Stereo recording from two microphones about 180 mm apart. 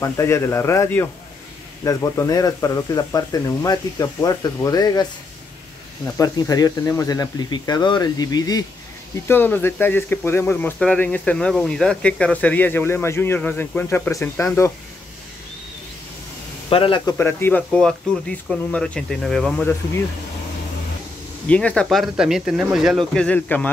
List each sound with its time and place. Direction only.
0.0 s speech: 15° left (ahead or behind)
6.1 s speech: 20° left (ahead or behind)
16.6 s speech: 30° left (ahead or behind)
17.2 s speech: 15° left (ahead or behind)
21.5 s speech: 5° left (ahead or behind)